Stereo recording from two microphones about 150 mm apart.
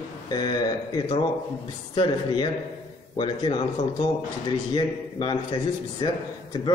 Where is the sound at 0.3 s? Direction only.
25° left (ahead or behind).